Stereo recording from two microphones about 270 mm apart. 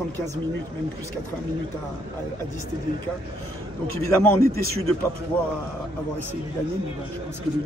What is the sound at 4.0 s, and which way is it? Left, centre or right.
Speech, centre.